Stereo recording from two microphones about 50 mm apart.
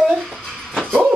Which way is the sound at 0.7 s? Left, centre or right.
Centre.